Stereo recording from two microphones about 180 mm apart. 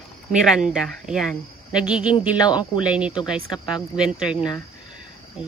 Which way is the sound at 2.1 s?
25° left (ahead or behind).